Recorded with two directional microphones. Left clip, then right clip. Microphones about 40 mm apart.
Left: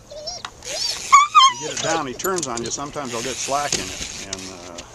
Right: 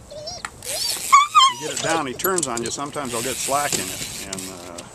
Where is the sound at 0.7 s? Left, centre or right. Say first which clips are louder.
Left 1 dB; left.